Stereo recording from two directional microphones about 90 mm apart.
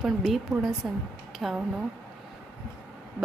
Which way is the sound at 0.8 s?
10° right (ahead or behind).